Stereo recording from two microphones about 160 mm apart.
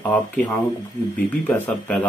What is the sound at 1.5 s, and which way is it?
Speech, 10° left (ahead or behind).